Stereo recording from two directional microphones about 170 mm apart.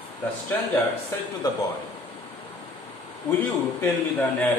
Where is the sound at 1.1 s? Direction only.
15° left (ahead or behind).